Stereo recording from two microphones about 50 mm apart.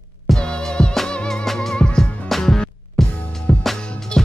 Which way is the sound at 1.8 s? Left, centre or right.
Centre.